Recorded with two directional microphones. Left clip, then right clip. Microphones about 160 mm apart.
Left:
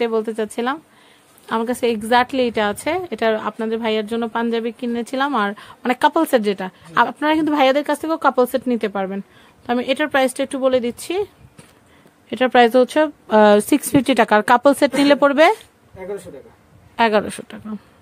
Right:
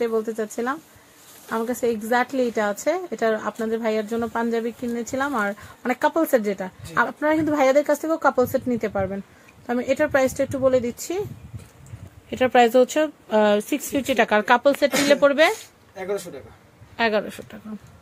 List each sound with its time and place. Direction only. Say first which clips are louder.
0.0 s speech: left 4 dB; 45° left (ahead or behind)
12.3 s speech: left 3 dB; 25° left (ahead or behind)
13.4 s a woman's voice: left 7 dB; 50° left (ahead or behind); by 15.5 s 75° left (ahead or behind)
16.9 s speech: left 6 dB; 65° left (ahead or behind); by 17.7 s 40° left (ahead or behind)